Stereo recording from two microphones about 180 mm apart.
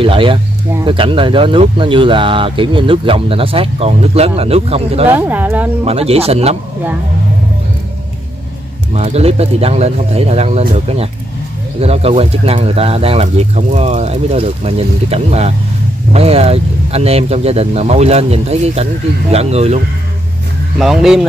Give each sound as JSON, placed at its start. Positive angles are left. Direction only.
{"t": 0.0, "sound": "speech", "side_deg": -30}
{"t": 5.0, "sound": "speech", "side_deg": -10}
{"t": 5.9, "sound": "speech", "side_deg": -35}
{"t": 8.9, "sound": "speech", "side_deg": -35}
{"t": 11.8, "sound": "speech", "side_deg": -35}
{"t": 20.8, "sound": "speech", "side_deg": 0}